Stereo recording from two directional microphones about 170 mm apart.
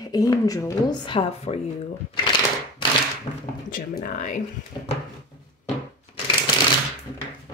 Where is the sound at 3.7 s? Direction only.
55° left (ahead or behind).